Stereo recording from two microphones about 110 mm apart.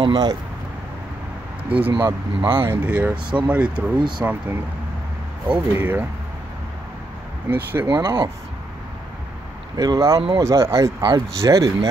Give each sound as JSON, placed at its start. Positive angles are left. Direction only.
{"t": 0.0, "sound": "speech", "side_deg": -40}
{"t": 1.7, "sound": "speech", "side_deg": -15}
{"t": 7.4, "sound": "speech", "side_deg": -20}
{"t": 9.8, "sound": "speech", "side_deg": -35}
{"t": 11.0, "sound": "speech", "side_deg": -40}